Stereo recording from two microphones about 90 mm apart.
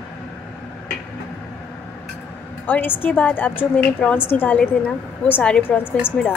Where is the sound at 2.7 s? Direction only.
20° left (ahead or behind).